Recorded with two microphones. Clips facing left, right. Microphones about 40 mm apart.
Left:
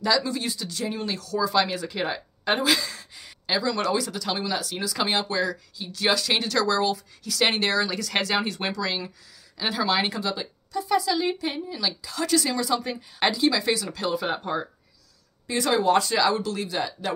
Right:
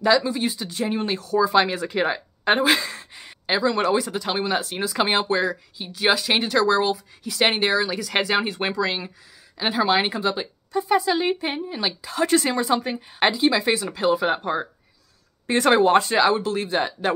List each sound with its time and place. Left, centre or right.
0.0 s speech: right
15.4 s speech: right